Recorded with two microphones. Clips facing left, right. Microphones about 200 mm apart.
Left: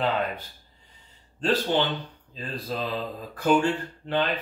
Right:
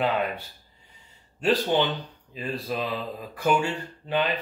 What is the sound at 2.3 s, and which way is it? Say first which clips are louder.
Speech: right 2 dB; 10° right (ahead or behind).